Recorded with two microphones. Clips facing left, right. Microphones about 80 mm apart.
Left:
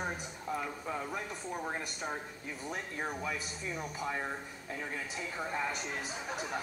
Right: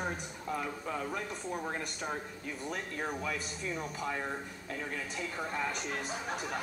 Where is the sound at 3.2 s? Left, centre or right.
Centre.